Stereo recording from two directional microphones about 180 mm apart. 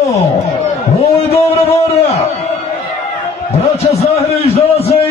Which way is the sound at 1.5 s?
35° left (ahead or behind).